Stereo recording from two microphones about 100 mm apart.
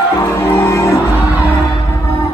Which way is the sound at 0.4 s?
30° left (ahead or behind).